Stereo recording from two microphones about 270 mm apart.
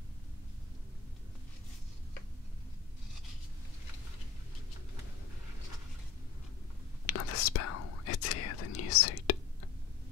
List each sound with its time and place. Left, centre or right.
7.1 s whispering: left